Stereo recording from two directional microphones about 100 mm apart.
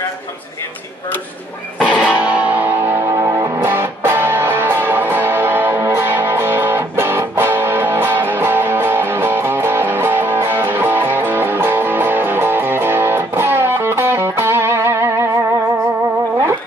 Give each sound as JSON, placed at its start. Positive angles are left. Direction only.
{"t": 1.8, "sound": "music", "side_deg": 10}
{"t": 2.0, "sound": "music", "side_deg": -15}